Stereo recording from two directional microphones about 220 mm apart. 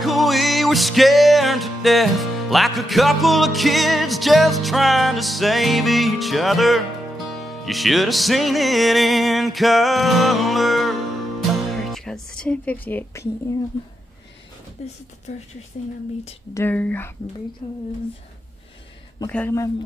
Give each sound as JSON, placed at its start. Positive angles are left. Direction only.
{"t": 0.0, "sound": "music", "side_deg": 0}
{"t": 13.5, "sound": "speech", "side_deg": 15}
{"t": 15.3, "sound": "speech", "side_deg": 30}
{"t": 16.5, "sound": "speech", "side_deg": 10}
{"t": 17.6, "sound": "speech", "side_deg": 25}
{"t": 19.1, "sound": "speech", "side_deg": 10}